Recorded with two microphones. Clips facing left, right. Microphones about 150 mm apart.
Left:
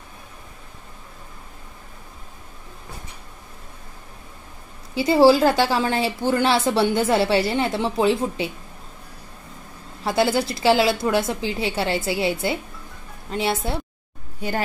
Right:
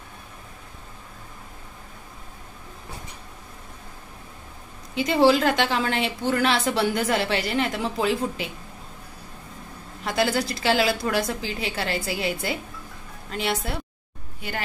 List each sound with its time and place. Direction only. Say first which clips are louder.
4.9 s a woman's voice: left 4 dB; 30° left (ahead or behind)
10.0 s a woman's voice: left 3 dB; 30° left (ahead or behind)